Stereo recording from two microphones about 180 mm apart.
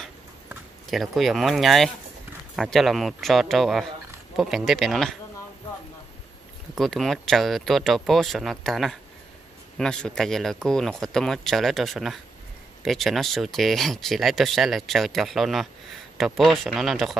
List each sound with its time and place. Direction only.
0.0 s a sound: centre (ahead or behind)
2.5 s speech: centre (ahead or behind)
6.8 s speech: centre (ahead or behind)